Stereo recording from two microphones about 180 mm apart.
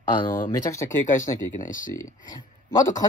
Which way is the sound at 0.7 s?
15° left (ahead or behind).